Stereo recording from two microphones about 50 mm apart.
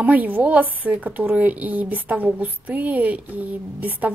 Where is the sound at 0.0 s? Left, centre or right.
Right.